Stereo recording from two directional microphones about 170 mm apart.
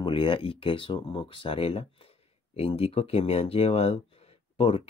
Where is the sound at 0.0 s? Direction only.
30° left (ahead or behind).